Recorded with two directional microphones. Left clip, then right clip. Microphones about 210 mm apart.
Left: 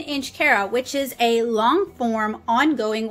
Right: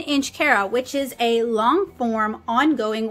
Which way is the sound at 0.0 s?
20° right (ahead or behind).